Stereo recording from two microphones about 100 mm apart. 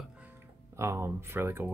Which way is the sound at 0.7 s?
25° right (ahead or behind).